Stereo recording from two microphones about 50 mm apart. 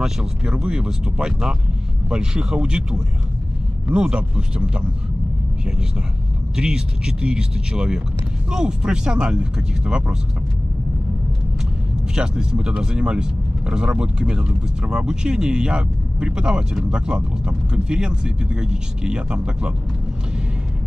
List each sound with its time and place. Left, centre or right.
0.0 s speech: centre
6.5 s speech: centre
12.2 s speech: centre